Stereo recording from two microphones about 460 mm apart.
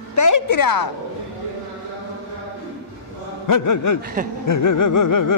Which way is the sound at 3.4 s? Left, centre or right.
Left.